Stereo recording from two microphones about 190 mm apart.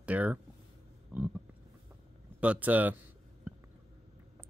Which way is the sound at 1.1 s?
5° right (ahead or behind).